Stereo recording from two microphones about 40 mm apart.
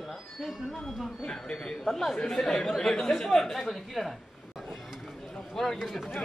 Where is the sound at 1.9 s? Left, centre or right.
Centre.